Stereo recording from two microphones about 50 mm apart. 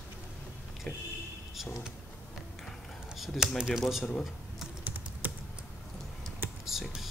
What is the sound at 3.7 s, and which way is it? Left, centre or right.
Speech, centre.